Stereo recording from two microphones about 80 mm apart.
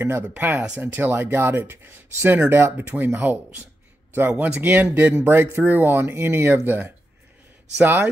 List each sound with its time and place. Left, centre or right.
0.0 s speech: right